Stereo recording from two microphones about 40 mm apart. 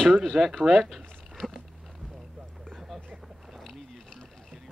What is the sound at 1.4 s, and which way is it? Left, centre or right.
Speech, left.